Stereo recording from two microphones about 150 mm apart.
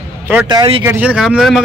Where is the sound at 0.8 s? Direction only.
10° right (ahead or behind).